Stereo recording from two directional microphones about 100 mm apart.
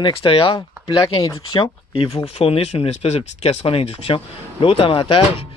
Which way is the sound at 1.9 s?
85° left.